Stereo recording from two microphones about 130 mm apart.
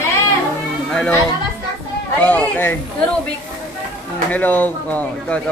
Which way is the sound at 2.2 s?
10° left (ahead or behind).